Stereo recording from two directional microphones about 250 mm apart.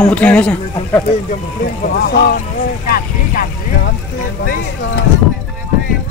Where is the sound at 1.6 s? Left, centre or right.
Left.